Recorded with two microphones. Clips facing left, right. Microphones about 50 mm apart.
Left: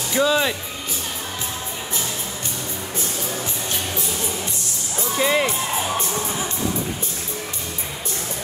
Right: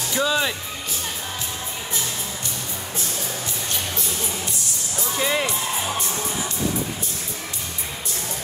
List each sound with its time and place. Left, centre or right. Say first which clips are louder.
0.1 s speech: left 3 dB; centre
5.1 s speech: left 4 dB; centre